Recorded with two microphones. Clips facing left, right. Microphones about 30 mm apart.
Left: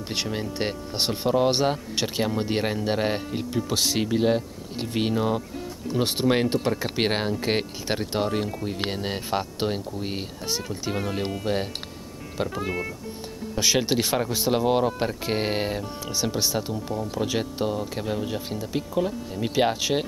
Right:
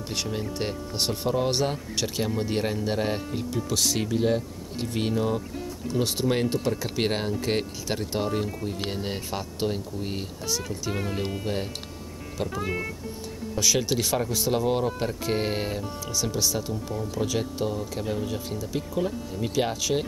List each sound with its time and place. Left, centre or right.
0.1 s speech: left
10.9 s speech: centre
12.6 s speech: centre
13.6 s speech: left